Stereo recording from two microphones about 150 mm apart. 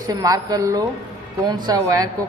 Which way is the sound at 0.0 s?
25° right (ahead or behind).